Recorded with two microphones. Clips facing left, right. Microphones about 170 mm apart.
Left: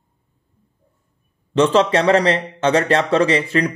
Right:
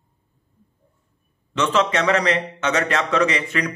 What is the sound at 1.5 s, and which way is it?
Speech, 35° left (ahead or behind).